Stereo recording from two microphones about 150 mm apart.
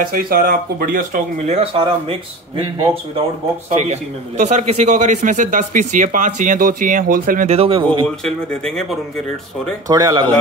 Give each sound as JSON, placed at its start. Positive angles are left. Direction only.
{"t": 0.0, "sound": "a man's voice", "side_deg": -75}
{"t": 3.9, "sound": "a man's voice", "side_deg": -50}
{"t": 7.4, "sound": "speech", "side_deg": -40}
{"t": 8.2, "sound": "speech", "side_deg": 5}
{"t": 9.8, "sound": "a man's voice", "side_deg": -25}